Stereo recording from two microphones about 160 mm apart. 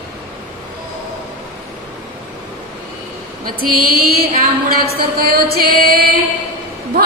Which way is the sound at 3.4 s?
65° right (ahead or behind).